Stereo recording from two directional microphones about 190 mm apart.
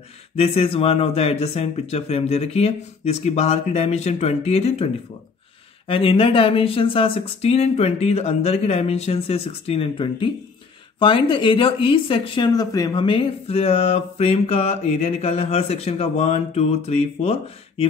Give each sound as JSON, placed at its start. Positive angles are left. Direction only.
{"t": 0.4, "sound": "speech", "side_deg": 30}
{"t": 5.9, "sound": "speech", "side_deg": 30}